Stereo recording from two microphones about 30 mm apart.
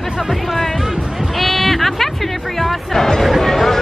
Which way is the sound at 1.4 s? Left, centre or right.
Centre.